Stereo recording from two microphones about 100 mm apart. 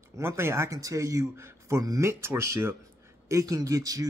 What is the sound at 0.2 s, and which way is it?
Speech, 25° right (ahead or behind).